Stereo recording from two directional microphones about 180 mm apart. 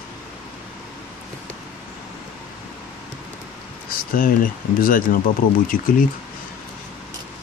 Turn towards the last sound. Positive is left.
turn(degrees=50)  # may be behind; listen again after turning